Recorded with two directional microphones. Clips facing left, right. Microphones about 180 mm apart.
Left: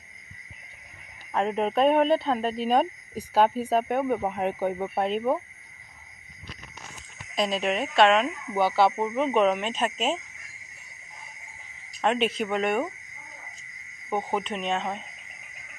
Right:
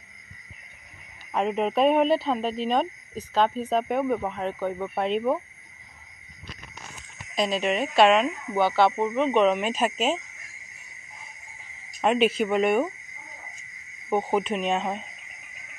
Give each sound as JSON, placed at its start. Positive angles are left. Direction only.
{"t": 1.3, "sound": "speech", "side_deg": 0}
{"t": 4.2, "sound": "speech", "side_deg": 15}
{"t": 7.3, "sound": "speech", "side_deg": 0}
{"t": 9.6, "sound": "speech", "side_deg": -5}
{"t": 12.0, "sound": "speech", "side_deg": -5}
{"t": 14.0, "sound": "speech", "side_deg": -10}